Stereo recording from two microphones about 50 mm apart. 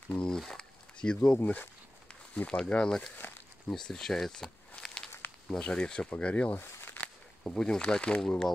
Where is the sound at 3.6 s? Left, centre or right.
Centre.